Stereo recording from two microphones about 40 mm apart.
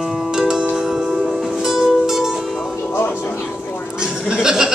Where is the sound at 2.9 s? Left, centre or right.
Left.